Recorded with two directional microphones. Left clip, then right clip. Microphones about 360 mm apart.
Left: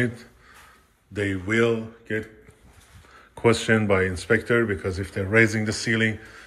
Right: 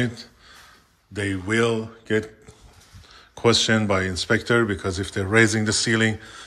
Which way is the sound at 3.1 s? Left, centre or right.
Centre.